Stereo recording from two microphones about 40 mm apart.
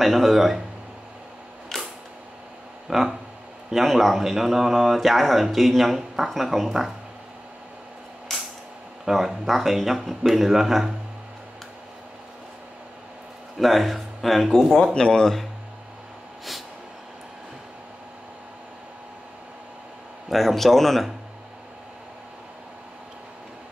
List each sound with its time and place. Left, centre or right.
0.0 s speech: centre
1.7 s a sound: centre
2.9 s speech: centre
9.0 s speech: centre
13.6 s speech: centre
14.8 s speech: left
20.2 s speech: centre